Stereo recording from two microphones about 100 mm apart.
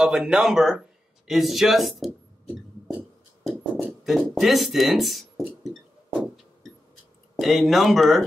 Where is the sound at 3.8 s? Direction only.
Centre (ahead or behind).